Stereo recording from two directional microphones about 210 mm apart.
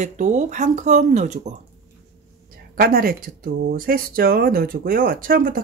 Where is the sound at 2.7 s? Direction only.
45° right (ahead or behind).